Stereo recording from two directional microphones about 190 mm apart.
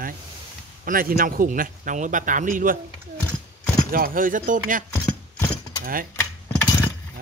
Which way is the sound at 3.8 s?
50° right (ahead or behind).